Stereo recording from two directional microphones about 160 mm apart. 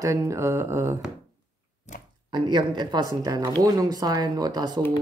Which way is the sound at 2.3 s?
25° right (ahead or behind).